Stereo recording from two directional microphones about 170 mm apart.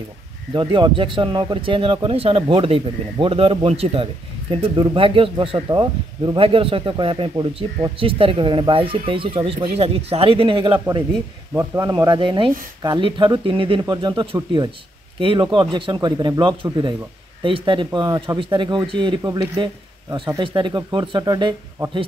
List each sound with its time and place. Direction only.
0.5 s speech: 30° right (ahead or behind)